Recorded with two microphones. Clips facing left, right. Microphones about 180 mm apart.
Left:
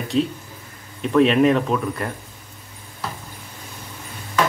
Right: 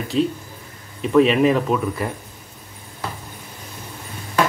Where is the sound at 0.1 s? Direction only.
Centre (ahead or behind).